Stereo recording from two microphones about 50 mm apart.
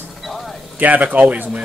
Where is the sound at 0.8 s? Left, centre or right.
Right.